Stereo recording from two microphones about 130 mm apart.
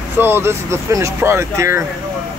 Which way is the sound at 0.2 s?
15° right (ahead or behind).